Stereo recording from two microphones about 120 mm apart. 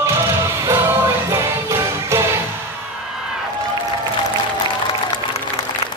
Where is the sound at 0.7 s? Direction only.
25° right (ahead or behind).